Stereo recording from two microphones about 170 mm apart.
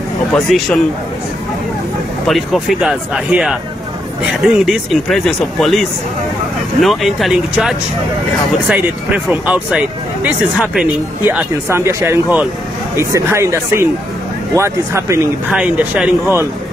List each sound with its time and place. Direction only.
0.3 s speech: centre (ahead or behind)
2.2 s speech: centre (ahead or behind)